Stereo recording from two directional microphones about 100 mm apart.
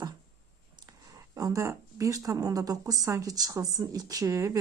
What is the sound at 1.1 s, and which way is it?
Speech, 35° right (ahead or behind).